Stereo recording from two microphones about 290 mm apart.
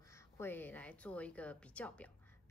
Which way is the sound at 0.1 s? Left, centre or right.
Centre.